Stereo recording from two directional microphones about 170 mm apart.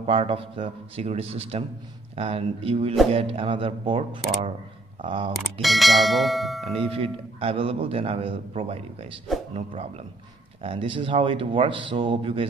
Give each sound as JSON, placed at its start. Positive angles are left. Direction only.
{"t": 0.0, "sound": "speech", "side_deg": -35}
{"t": 5.3, "sound": "clang", "side_deg": 0}
{"t": 6.8, "sound": "speech", "side_deg": -35}
{"t": 9.3, "sound": "speech", "side_deg": 0}
{"t": 10.6, "sound": "speech", "side_deg": -30}